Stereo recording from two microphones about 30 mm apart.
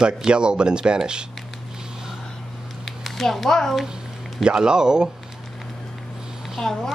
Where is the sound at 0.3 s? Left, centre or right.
Right.